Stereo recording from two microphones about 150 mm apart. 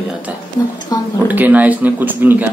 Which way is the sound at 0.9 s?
25° left (ahead or behind).